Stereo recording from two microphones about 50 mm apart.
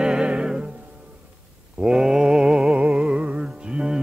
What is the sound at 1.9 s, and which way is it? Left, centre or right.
Mantra, centre.